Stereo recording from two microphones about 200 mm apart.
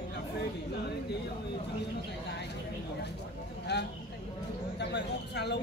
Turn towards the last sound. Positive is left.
turn(degrees=55)  # may be behind; listen again after turning